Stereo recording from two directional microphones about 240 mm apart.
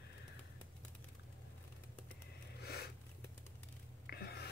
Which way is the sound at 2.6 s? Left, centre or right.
Left.